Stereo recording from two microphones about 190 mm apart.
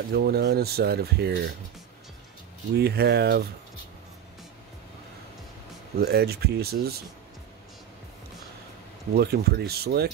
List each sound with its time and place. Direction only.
0.1 s speech: 55° right (ahead or behind)
2.7 s speech: 60° right (ahead or behind)
5.9 s speech: 55° right (ahead or behind)
9.1 s speech: 55° right (ahead or behind)